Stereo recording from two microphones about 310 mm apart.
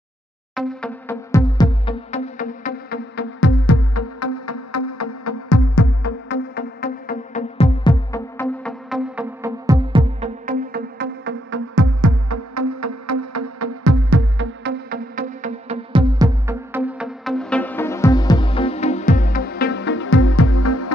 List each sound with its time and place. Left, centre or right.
0.6 s music: centre; by 6.1 s left
6.2 s music: left; by 10.3 s centre
10.4 s music: right
11.8 s music: right; by 20.9 s left